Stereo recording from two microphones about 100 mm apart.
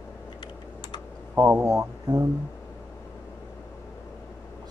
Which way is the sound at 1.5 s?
25° right (ahead or behind).